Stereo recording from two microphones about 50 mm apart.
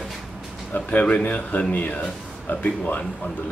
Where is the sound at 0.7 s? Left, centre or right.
Left.